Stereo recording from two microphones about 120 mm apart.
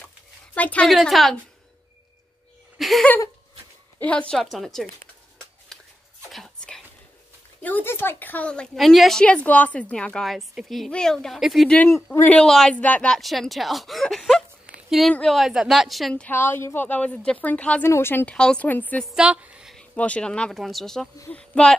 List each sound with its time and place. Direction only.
0.6 s a woman's voice: 10° left (ahead or behind)
0.8 s speech: centre (ahead or behind)
2.8 s a sound: centre (ahead or behind)
4.0 s speech: 10° left (ahead or behind)
5.7 s a sound: 5° left (ahead or behind)
7.6 s a woman's voice: 15° left (ahead or behind)
11.8 s speech: 20° left (ahead or behind)
12.4 s speech: 5° left (ahead or behind)
16.3 s a woman's voice: 20° left (ahead or behind)
19.0 s speech: 5° right (ahead or behind)
19.7 s a woman's voice: 10° left (ahead or behind)